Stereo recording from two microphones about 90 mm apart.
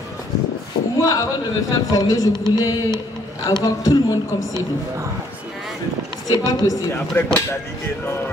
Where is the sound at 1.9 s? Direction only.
45° left (ahead or behind).